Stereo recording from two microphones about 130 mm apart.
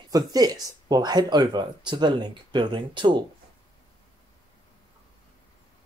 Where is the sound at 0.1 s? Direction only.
30° right (ahead or behind).